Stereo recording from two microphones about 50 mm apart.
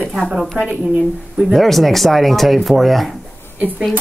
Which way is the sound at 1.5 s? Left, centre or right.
Centre.